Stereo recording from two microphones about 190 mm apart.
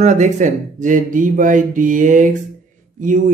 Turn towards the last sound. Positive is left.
turn(degrees=-45)  # may be behind; listen again after turning